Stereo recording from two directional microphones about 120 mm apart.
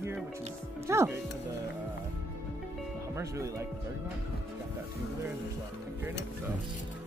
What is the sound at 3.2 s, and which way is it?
Speech, 25° right (ahead or behind).